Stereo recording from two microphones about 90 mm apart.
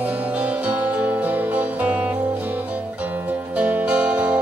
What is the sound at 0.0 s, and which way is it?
Music, 15° right (ahead or behind).